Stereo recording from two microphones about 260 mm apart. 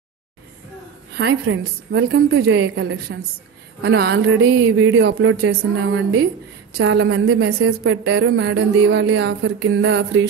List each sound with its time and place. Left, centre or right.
1.1 s a woman's voice: right